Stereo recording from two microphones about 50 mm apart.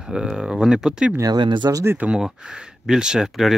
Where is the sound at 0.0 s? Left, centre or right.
Centre.